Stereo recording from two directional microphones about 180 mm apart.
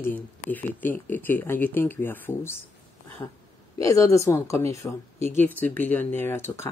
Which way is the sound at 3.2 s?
20° left (ahead or behind).